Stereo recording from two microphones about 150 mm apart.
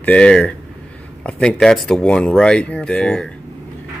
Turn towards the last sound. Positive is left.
turn(degrees=5)  # may be behind; listen again after turning